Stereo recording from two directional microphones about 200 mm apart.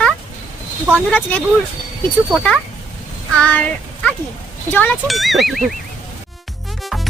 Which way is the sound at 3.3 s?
5° left (ahead or behind).